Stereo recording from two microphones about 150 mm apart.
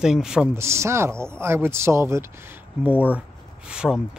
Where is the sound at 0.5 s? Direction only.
20° right (ahead or behind).